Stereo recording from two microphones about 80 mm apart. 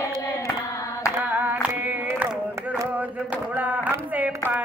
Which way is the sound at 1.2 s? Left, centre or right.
Right.